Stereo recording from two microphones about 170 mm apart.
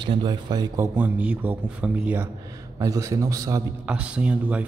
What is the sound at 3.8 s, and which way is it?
Speech, 5° right (ahead or behind).